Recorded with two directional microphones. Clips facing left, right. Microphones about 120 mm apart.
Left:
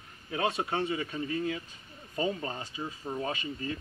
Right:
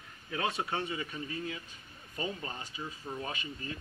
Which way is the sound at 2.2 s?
30° left (ahead or behind).